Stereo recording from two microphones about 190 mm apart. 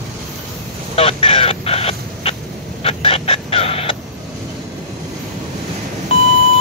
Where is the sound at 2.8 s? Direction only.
30° left (ahead or behind).